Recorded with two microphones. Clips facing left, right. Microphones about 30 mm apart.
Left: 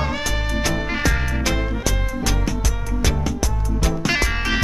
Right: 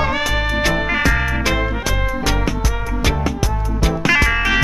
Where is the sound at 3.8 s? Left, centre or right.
Right.